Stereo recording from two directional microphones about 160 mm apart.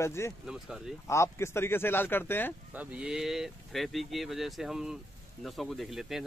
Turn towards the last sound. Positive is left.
turn(degrees=0)  # may be behind; listen again after turning